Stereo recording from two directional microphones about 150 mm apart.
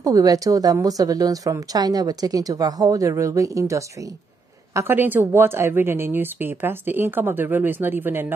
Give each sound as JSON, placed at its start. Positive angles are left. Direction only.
{"t": 0.0, "sound": "a woman's voice", "side_deg": -25}